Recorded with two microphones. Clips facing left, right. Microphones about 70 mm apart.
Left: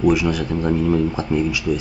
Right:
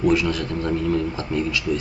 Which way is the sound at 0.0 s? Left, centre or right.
Centre.